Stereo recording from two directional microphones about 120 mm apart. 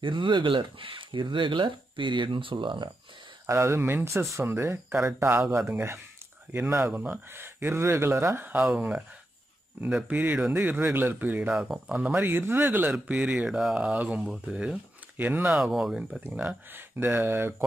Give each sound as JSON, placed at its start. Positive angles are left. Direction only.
{"t": 0.0, "sound": "speech", "side_deg": -45}
{"t": 3.4, "sound": "speech", "side_deg": -25}
{"t": 15.5, "sound": "speech", "side_deg": -5}